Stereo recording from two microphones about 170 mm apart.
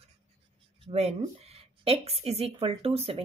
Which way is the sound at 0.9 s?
40° right (ahead or behind).